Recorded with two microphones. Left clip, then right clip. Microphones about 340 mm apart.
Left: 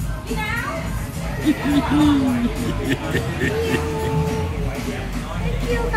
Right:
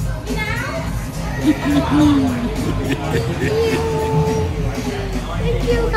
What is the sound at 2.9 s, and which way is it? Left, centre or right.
Speech, left.